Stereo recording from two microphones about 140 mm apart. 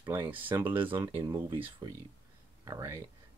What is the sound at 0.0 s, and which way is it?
Speech, 15° right (ahead or behind).